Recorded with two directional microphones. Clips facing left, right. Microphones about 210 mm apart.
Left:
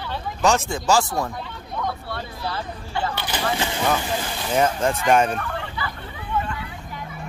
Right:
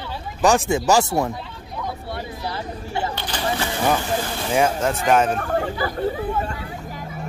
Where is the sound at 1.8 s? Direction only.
15° right (ahead or behind).